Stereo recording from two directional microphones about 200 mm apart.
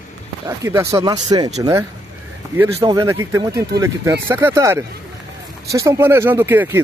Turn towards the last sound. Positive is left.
turn(degrees=-10)  # may be behind; listen again after turning